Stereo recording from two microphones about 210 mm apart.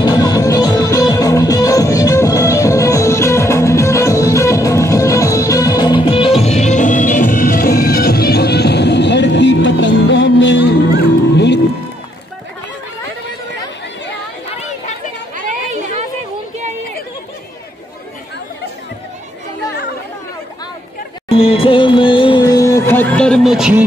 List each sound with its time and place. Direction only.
0.0 s music: 20° left (ahead or behind); by 11.6 s 55° left (ahead or behind)
15.3 s chatter: 40° right (ahead or behind)
21.3 s music: 25° left (ahead or behind); by 23.8 s 5° right (ahead or behind)